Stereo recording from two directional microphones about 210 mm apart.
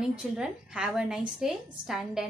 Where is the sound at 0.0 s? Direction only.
5° right (ahead or behind).